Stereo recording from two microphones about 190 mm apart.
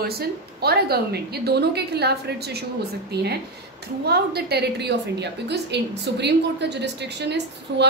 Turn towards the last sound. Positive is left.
turn(degrees=-60)  # may be behind; listen again after turning